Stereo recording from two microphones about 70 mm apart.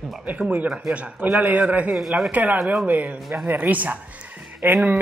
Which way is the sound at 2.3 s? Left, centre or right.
Right.